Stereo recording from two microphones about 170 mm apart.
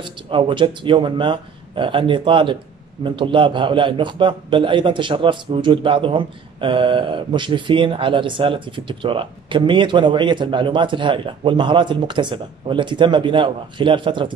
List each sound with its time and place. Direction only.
0.0 s a man's voice: 30° right (ahead or behind)